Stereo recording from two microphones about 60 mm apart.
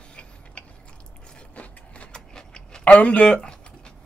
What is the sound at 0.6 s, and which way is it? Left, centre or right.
Biting, left.